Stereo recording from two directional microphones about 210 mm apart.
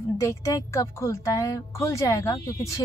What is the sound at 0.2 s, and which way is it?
Speech, 15° left (ahead or behind).